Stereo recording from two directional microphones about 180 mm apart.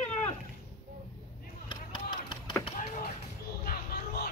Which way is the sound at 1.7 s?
25° left (ahead or behind).